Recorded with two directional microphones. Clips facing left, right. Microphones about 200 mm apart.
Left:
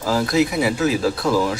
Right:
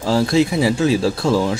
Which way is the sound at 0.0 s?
30° right (ahead or behind).